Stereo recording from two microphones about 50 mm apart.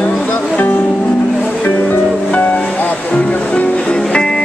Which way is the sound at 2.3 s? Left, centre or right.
Left.